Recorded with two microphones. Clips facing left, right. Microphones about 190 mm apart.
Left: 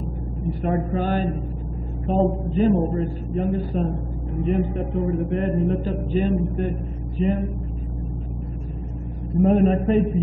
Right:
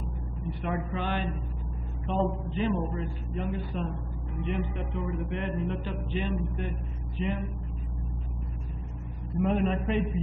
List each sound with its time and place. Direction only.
0.5 s speech: 40° left (ahead or behind)
9.4 s a man's voice: 45° left (ahead or behind)